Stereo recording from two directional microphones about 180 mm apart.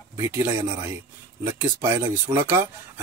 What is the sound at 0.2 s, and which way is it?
Speech, 15° right (ahead or behind).